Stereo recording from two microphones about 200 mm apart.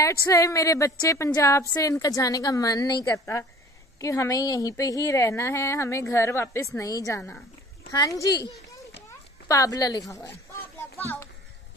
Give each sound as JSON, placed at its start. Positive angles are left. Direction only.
{"t": 0.0, "sound": "a woman's voice", "side_deg": 15}